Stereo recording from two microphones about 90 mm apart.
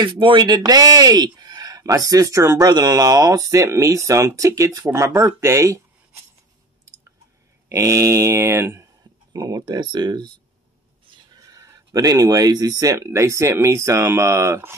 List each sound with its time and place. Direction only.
0.0 s speech: 60° right (ahead or behind)
0.7 s speech: 45° right (ahead or behind)
7.7 s speech: 35° right (ahead or behind)
9.3 s speech: 50° right (ahead or behind)
11.3 s speech: 40° right (ahead or behind)